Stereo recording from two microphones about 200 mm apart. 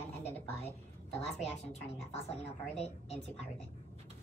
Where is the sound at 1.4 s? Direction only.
30° left (ahead or behind).